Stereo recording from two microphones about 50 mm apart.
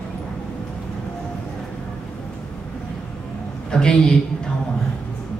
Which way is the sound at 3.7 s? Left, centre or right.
Centre.